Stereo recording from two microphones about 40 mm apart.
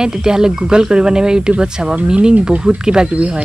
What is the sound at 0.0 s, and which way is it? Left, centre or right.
Speech, centre.